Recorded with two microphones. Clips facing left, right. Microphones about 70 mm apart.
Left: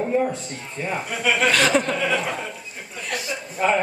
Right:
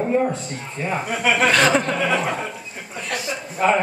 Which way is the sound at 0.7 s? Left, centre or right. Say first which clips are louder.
Right 3 dB; centre.